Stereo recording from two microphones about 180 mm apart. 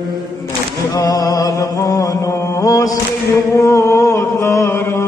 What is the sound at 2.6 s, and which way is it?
Mantra, 20° left (ahead or behind).